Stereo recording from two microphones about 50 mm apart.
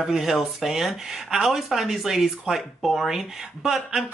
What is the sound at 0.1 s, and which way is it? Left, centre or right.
Speech, centre.